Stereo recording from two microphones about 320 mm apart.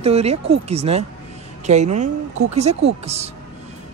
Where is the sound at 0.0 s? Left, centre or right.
Centre.